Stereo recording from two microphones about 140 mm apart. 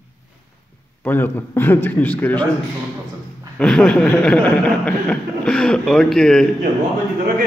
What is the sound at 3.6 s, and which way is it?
Speech, 5° left (ahead or behind).